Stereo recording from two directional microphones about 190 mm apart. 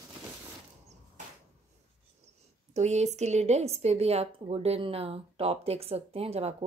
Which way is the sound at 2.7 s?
35° right (ahead or behind).